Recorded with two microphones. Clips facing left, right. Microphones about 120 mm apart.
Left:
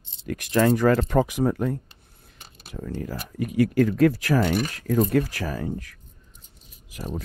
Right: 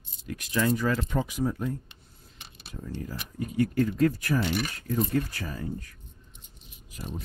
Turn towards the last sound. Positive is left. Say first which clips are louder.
# left 4 dB
turn(degrees=90)